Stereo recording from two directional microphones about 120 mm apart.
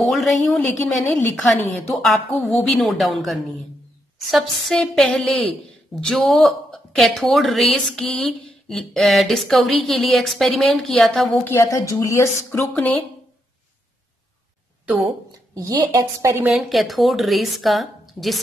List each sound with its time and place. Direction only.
0.0 s a woman's voice: centre (ahead or behind)
11.4 s speech: 25° left (ahead or behind)
12.7 s speech: 15° left (ahead or behind)
15.5 s a woman's voice: 30° right (ahead or behind)
16.5 s a woman's voice: centre (ahead or behind)